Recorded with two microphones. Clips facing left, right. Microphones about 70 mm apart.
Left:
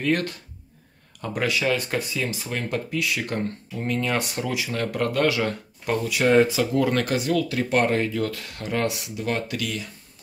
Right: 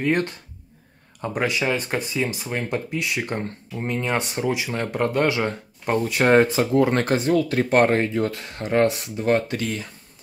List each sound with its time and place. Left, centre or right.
0.0 s speech: right